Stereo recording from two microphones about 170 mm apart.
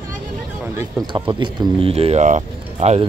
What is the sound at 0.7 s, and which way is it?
Speech, 25° right (ahead or behind).